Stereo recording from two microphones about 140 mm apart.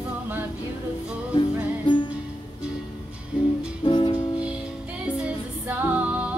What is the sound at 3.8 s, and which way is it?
Music, 35° left (ahead or behind).